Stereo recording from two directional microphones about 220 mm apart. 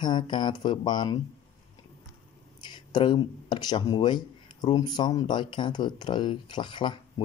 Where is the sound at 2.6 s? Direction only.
20° left (ahead or behind).